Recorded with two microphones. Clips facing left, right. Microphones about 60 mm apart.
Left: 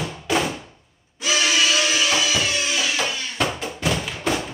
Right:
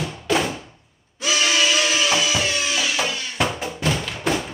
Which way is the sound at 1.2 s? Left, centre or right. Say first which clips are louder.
Even; centre.